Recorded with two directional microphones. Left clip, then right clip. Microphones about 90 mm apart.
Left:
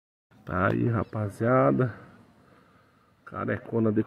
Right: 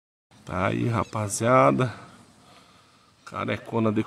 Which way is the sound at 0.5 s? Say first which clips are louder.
Even; 5° left (ahead or behind).